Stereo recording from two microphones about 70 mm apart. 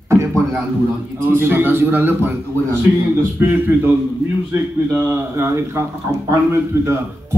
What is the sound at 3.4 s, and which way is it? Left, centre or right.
Speech, right.